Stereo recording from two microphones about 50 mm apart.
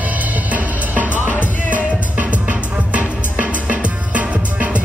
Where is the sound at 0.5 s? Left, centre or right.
Right.